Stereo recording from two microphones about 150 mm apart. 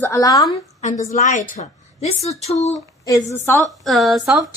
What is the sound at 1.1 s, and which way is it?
A woman's voice, 60° left (ahead or behind).